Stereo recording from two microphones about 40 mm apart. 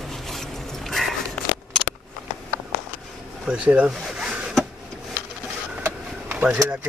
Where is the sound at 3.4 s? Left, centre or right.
Right.